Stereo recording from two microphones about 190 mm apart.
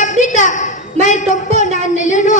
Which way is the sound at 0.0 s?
40° left (ahead or behind).